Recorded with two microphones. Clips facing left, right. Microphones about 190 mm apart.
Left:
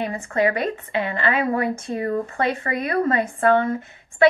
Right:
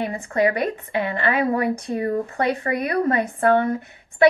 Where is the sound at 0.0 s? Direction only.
15° right (ahead or behind).